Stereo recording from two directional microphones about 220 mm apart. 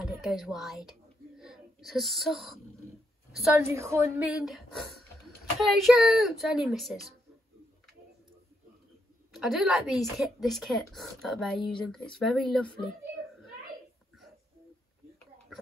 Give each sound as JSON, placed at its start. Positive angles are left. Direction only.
{"t": 0.0, "sound": "speech", "side_deg": 0}
{"t": 3.5, "sound": "a woman's voice", "side_deg": -10}
{"t": 9.3, "sound": "a woman's voice", "side_deg": 0}